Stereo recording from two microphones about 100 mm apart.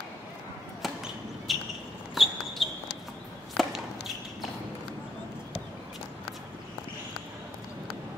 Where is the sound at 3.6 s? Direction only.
Centre (ahead or behind).